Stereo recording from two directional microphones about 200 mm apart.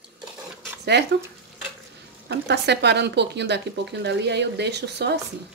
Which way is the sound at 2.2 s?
55° right (ahead or behind).